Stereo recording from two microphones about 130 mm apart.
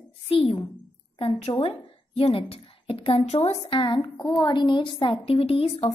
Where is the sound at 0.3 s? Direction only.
40° left (ahead or behind).